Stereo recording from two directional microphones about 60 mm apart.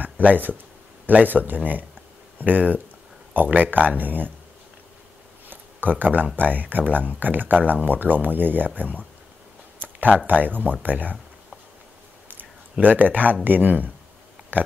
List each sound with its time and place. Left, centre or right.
0.0 s speech: right
5.5 s a sound: right
6.3 s speech: right
9.8 s a sound: right
10.4 s speech: right
12.7 s speech: right